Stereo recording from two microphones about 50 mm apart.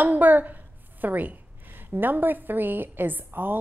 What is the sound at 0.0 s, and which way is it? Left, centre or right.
A woman's voice, right.